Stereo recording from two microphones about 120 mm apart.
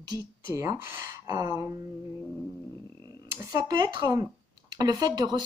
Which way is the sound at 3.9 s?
35° right (ahead or behind).